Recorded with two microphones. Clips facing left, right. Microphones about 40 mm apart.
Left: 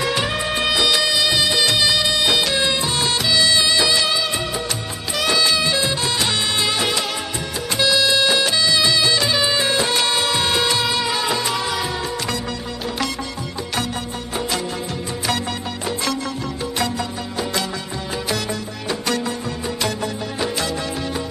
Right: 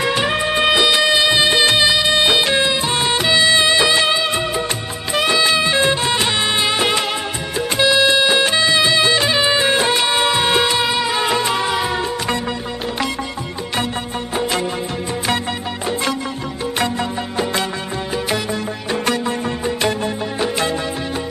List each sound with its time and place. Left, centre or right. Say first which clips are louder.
0.0 s music of bollywood: right 3 dB; right
2.1 s music: right 4 dB; right
3.0 s music of bollywood: right 4 dB; right
5.2 s music: right 2 dB; right
6.0 s music of bollywood: right 3 dB; right
7.7 s music: right 3 dB; right
8.4 s music of bollywood: right 3 dB; right; by 11.1 s centre
11.1 s music of bollywood: right 4 dB; right